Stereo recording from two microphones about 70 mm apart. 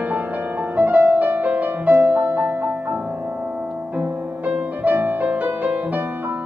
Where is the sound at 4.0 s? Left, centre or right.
Right.